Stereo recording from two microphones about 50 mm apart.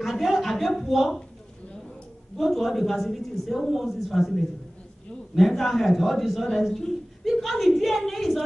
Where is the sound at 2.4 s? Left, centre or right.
Centre.